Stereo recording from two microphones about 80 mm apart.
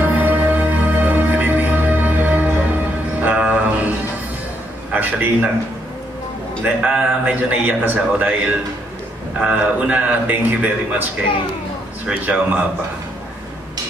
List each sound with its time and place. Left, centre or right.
0.0 s music: right
4.9 s a sound: centre
6.6 s a man's voice: centre
9.4 s a man's voice: centre
12.1 s a man's voice: centre